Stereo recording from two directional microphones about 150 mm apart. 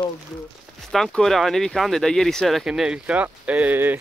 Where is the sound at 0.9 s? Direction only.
Centre (ahead or behind).